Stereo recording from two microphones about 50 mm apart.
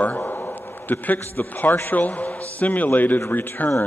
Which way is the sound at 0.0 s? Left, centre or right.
Left.